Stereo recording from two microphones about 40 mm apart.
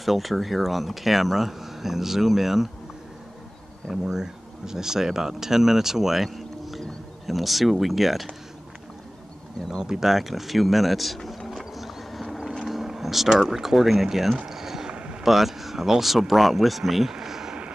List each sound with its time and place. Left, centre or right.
0.0 s speech: centre
3.9 s speech: centre
9.7 s speech: centre
11.2 s a sound: centre
12.6 s speech: centre
14.5 s a sound: centre
14.9 s a sound: right
15.2 s speech: centre
17.1 s vehicle: centre